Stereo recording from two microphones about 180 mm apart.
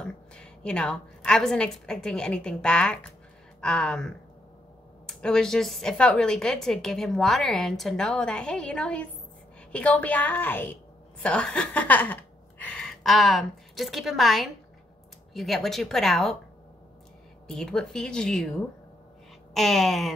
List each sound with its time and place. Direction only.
0.0 s a woman's voice: 5° left (ahead or behind)
17.5 s a woman's voice: 5° left (ahead or behind)
19.5 s a woman's voice: centre (ahead or behind)